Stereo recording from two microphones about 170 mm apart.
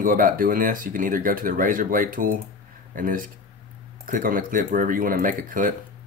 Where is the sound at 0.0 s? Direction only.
55° right (ahead or behind).